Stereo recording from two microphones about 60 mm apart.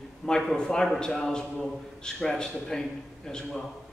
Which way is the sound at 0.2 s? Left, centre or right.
Centre.